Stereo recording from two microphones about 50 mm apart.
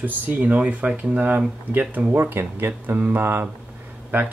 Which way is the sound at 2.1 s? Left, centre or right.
Right.